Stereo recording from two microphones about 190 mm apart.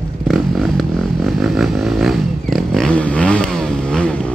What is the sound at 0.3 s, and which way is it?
Vehicle, centre (ahead or behind).